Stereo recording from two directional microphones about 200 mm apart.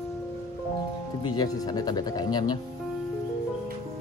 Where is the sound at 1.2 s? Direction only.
20° left (ahead or behind).